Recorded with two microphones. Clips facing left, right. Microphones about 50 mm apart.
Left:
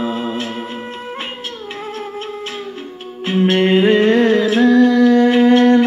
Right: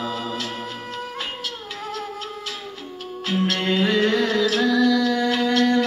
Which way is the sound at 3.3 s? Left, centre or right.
Left.